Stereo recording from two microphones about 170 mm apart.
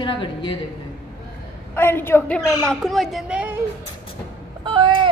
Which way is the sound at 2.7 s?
Centre (ahead or behind).